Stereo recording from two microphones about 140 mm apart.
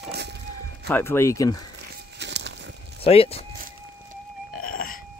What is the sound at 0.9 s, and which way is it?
Speech, 20° left (ahead or behind).